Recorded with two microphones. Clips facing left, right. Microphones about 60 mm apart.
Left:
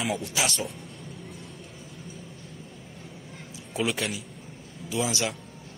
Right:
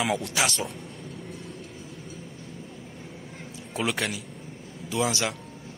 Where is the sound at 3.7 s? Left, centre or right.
Right.